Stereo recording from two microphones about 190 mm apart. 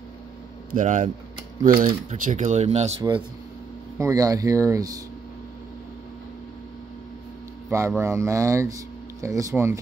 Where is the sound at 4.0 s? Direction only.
20° right (ahead or behind).